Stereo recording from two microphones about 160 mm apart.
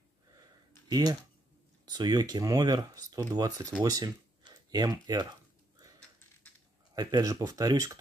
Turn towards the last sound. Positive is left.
turn(degrees=-20)  # may be behind; listen again after turning